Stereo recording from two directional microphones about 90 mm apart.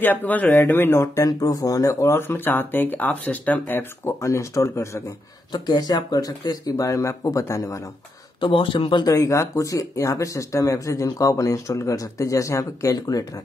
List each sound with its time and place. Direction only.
0.0 s speech: 20° left (ahead or behind)
1.2 s speech: 40° left (ahead or behind); by 4.1 s 20° left (ahead or behind)
4.2 s speech: 35° left (ahead or behind)
5.5 s speech: 45° left (ahead or behind)
8.4 s speech: 75° left (ahead or behind)
9.0 s speech: 35° left (ahead or behind)